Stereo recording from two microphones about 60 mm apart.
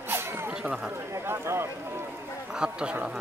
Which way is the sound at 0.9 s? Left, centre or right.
Right.